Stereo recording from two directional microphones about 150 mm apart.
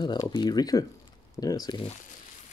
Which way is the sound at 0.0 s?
30° left (ahead or behind).